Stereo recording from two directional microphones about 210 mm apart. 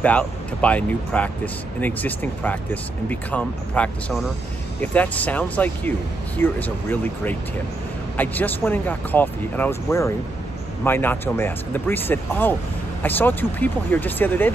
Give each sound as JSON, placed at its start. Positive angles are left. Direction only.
{"t": 0.0, "sound": "speech", "side_deg": 5}